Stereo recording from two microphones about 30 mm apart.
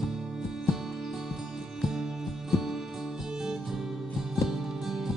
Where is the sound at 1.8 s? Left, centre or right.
Centre.